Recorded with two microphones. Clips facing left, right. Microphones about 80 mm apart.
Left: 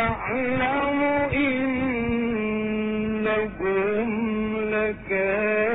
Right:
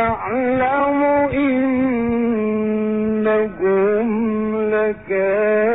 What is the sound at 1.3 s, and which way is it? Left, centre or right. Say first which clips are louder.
Music: right 7 dB; right.